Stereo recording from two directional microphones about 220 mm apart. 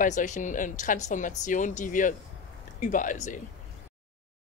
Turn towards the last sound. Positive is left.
turn(degrees=35)  # may be behind; listen again after turning